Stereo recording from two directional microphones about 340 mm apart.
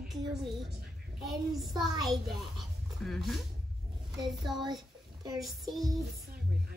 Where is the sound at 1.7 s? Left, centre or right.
Centre.